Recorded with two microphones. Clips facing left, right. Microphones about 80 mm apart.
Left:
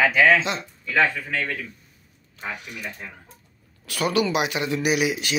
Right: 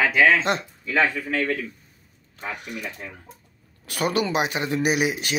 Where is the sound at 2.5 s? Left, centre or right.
Right.